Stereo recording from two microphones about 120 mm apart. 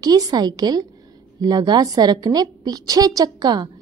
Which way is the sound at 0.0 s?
30° right (ahead or behind).